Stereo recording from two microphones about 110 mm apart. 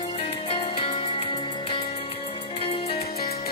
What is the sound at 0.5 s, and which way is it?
Music, 50° left (ahead or behind).